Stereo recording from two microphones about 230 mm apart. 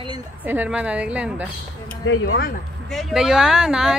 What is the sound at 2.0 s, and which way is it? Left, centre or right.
Speech, left.